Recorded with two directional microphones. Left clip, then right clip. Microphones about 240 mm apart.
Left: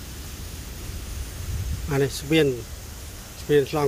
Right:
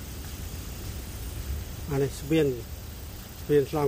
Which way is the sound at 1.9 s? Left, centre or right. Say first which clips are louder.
Left 4 dB; centre.